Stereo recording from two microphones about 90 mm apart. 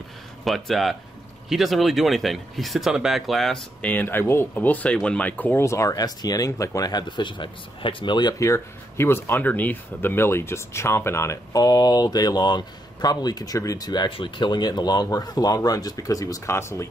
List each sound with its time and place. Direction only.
0.5 s speech: centre (ahead or behind)
3.8 s speech: 20° left (ahead or behind)
5.7 s speech: 35° left (ahead or behind); by 8.4 s 55° left (ahead or behind)
8.4 s speech: 30° left (ahead or behind)
11.5 s speech: 50° left (ahead or behind)
16.4 s speech: 30° left (ahead or behind)